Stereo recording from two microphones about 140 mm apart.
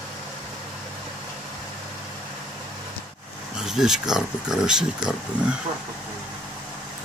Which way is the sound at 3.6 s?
5° right (ahead or behind).